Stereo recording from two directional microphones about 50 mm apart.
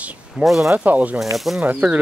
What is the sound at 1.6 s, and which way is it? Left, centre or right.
Speech, right.